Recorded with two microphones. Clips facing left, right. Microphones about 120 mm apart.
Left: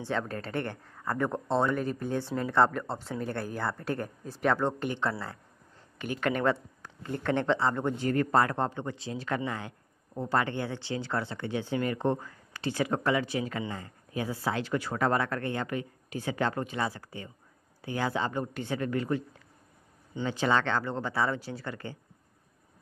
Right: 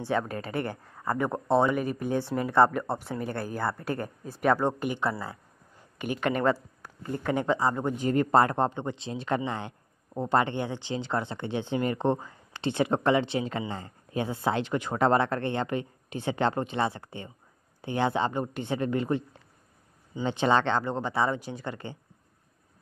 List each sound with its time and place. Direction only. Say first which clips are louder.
0.0 s speech: right 3 dB; 10° right (ahead or behind)
5.2 s a sound: right 2 dB; 10° right (ahead or behind)
6.3 s speech: right 2 dB; centre (ahead or behind); by 19.2 s 25° right (ahead or behind)
20.2 s speech: right 3 dB; 25° right (ahead or behind)